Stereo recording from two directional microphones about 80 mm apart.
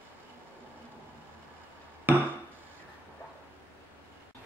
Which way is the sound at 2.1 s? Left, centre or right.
Right.